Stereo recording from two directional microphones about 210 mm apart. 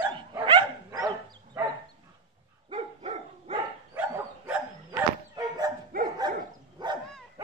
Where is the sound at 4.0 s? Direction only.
10° right (ahead or behind).